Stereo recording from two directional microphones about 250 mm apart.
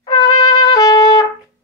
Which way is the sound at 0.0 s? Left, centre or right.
Centre.